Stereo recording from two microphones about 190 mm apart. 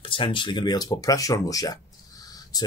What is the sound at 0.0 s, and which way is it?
Speech, 25° left (ahead or behind).